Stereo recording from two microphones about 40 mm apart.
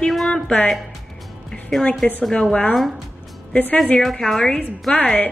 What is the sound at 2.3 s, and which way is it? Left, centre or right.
Speech, left.